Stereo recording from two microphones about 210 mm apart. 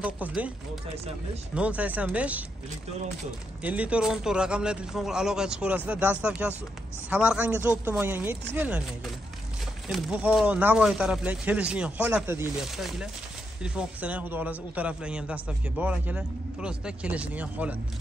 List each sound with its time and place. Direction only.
0.0 s a man's voice: 5° right (ahead or behind)
1.5 s a man's voice: 5° right (ahead or behind)
3.6 s a man's voice: 5° right (ahead or behind)